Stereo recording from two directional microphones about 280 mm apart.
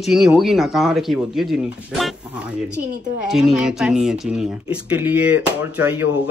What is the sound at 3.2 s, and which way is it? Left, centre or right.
Speech, centre.